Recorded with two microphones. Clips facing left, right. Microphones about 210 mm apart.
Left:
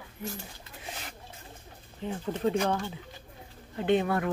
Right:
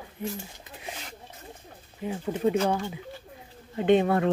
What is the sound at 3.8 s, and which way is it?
Speech, 20° right (ahead or behind).